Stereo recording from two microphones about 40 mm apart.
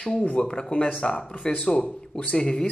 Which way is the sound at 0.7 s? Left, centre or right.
Left.